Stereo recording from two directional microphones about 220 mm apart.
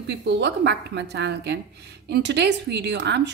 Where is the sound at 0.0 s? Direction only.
50° right (ahead or behind).